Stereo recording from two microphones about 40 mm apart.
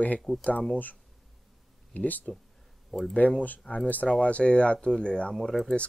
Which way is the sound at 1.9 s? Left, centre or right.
Left.